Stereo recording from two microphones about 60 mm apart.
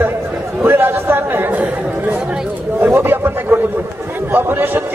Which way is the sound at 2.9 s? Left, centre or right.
Right.